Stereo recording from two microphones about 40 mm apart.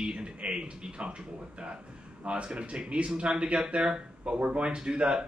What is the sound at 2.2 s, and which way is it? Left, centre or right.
Speech, right.